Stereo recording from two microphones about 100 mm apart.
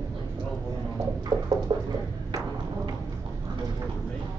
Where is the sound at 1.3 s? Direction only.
50° right (ahead or behind).